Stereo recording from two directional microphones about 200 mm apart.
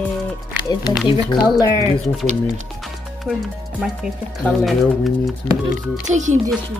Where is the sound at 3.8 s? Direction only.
5° right (ahead or behind).